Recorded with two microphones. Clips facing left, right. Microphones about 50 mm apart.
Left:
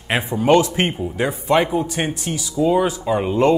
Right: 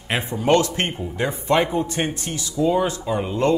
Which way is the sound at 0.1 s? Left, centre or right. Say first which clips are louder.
Left 3 dB; centre.